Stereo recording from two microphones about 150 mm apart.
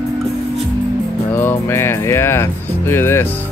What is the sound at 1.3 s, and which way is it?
Speech, 15° left (ahead or behind).